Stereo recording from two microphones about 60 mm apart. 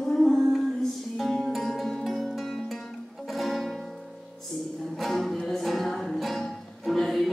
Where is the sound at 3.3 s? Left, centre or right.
Centre.